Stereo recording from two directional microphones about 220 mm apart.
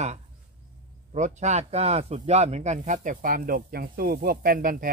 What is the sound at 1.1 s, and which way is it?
Speech, 30° right (ahead or behind).